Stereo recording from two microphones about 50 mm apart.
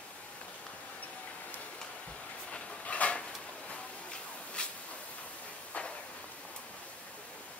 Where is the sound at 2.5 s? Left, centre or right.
Left.